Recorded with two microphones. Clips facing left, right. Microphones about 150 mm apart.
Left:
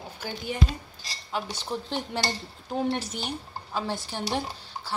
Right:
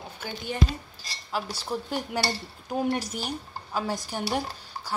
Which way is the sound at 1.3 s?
10° right (ahead or behind).